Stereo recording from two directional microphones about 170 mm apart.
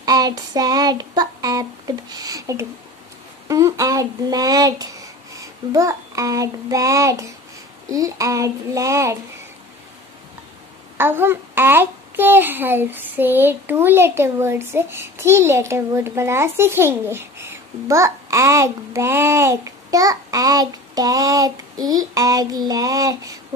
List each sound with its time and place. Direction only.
0.0 s child singing: 20° right (ahead or behind)
3.4 s a child's voice: 20° right (ahead or behind)
7.9 s child singing: 20° right (ahead or behind)
11.0 s a child's voice: 10° right (ahead or behind)